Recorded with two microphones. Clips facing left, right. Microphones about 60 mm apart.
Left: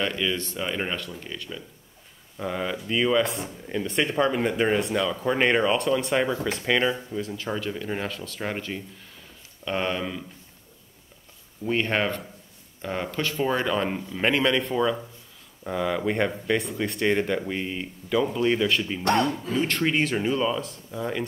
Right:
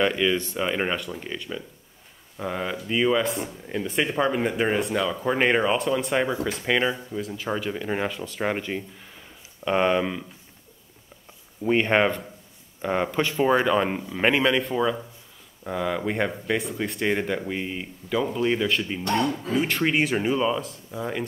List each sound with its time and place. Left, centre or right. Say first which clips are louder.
0.0 s speech: right 5 dB; centre
11.6 s speech: right 4 dB; centre
19.0 s speech: left 2 dB; left
19.5 s speech: right 1 dB; centre